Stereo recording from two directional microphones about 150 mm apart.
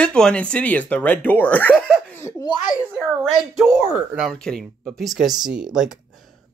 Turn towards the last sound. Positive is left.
turn(degrees=0)  # may be behind; listen again after turning